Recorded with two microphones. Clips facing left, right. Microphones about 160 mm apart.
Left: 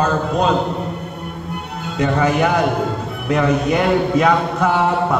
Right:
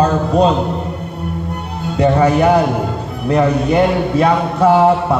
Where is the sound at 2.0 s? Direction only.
35° right (ahead or behind).